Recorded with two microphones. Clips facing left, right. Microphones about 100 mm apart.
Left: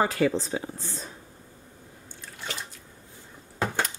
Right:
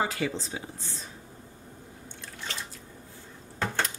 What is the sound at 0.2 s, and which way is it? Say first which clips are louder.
Speech: left 7 dB; 50° left (ahead or behind).